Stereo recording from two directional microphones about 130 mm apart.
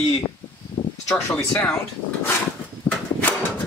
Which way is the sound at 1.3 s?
15° left (ahead or behind).